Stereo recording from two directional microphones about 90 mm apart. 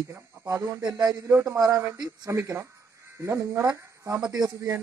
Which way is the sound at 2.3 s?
35° right (ahead or behind).